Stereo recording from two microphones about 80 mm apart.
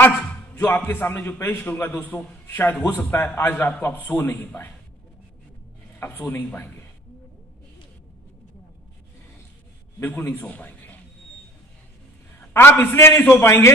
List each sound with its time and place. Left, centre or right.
0.6 s a man's voice: left
5.9 s speech: left
10.3 s a man's voice: left
12.4 s a man's voice: left